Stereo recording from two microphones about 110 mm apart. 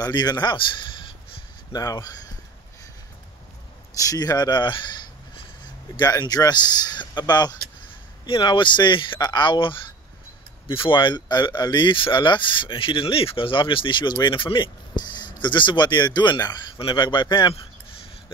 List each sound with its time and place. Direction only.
0.0 s speech: 40° left (ahead or behind)
1.7 s speech: 35° left (ahead or behind)
3.9 s speech: 30° left (ahead or behind)
16.7 s speech: 50° left (ahead or behind)